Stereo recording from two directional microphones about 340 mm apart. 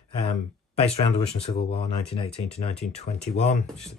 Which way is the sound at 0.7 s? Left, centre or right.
Centre.